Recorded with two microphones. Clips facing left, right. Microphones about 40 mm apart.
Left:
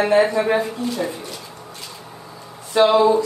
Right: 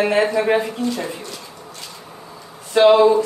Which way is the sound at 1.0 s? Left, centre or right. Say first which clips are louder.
Left 2 dB; centre.